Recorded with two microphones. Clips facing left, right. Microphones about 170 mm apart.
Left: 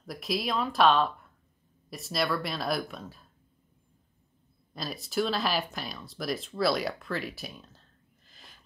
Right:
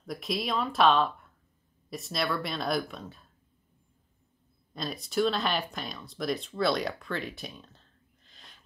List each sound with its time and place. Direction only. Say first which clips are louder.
0.0 s speech: left 1 dB; centre (ahead or behind)
4.7 s speech: right 1 dB; centre (ahead or behind)